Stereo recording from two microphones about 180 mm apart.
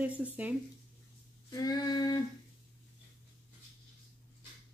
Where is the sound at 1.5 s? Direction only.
20° left (ahead or behind).